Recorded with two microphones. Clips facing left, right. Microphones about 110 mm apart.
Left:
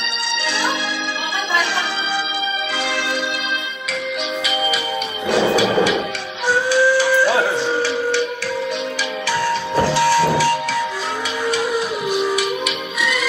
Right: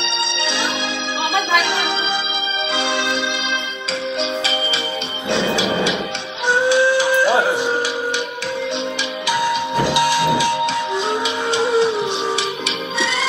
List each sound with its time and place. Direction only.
5.3 s music: 25° right (ahead or behind)
9.8 s train: 15° right (ahead or behind)
11.5 s music: 25° right (ahead or behind)